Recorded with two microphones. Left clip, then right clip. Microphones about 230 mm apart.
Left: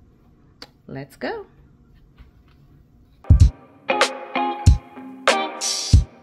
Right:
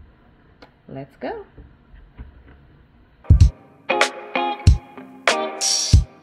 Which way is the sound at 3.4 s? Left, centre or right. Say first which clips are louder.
Even; centre.